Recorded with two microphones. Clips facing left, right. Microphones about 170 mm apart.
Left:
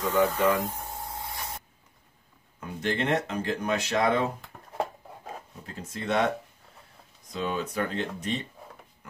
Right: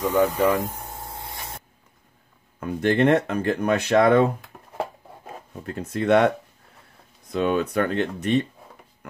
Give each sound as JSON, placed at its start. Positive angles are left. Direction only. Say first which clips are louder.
{"t": 0.0, "sound": "speech", "louder": "right 4 dB", "side_deg": -15}
{"t": 0.9, "sound": "spray", "louder": "even", "side_deg": -25}
{"t": 2.6, "sound": "speech", "louder": "right 9 dB", "side_deg": -55}
{"t": 4.5, "sound": "a sound", "louder": "right 2 dB", "side_deg": -5}
{"t": 5.7, "sound": "speech", "louder": "right 10 dB", "side_deg": -60}
{"t": 7.3, "sound": "speech", "louder": "right 8 dB", "side_deg": -65}
{"t": 9.0, "sound": "music", "louder": "right 8 dB", "side_deg": -60}